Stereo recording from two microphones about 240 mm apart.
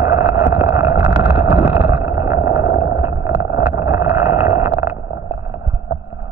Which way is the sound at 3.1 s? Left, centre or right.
Left.